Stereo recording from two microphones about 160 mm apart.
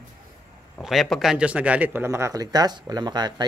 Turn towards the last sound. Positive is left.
turn(degrees=-25)  # may be behind; listen again after turning